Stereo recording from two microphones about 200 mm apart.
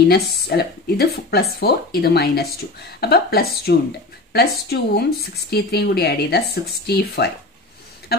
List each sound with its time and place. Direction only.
0.1 s speech: 50° left (ahead or behind)